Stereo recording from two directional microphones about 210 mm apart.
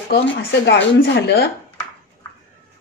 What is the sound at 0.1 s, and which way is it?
A woman's voice, 50° left (ahead or behind).